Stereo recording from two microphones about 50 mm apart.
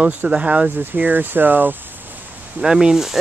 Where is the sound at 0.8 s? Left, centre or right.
Right.